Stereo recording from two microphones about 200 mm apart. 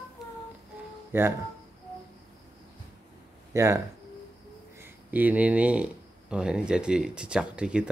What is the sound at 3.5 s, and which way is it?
Speech, 15° right (ahead or behind).